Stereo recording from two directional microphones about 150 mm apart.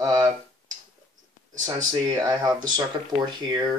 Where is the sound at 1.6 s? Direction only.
30° right (ahead or behind).